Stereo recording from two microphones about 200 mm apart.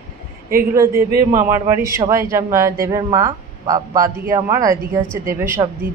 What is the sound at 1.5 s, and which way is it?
A man's voice, 15° right (ahead or behind).